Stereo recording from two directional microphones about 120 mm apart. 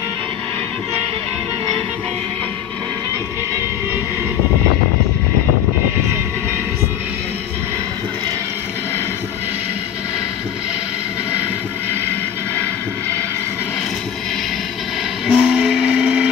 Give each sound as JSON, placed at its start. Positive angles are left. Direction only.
{"t": 15.2, "sound": "train", "side_deg": -5}